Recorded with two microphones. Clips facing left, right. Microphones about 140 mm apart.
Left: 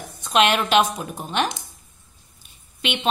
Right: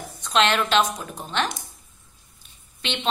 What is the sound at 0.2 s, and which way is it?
A woman's voice, 10° left (ahead or behind).